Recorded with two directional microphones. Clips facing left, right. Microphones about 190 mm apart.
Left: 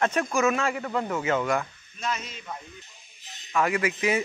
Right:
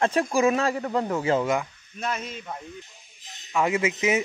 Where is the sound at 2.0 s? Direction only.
55° right (ahead or behind).